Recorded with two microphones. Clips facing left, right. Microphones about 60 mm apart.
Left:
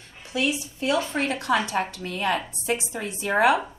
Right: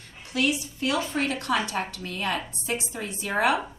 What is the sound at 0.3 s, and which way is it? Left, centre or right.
A woman's voice, left.